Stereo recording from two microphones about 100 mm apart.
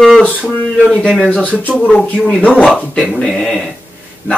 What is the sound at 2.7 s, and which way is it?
Speech, centre (ahead or behind).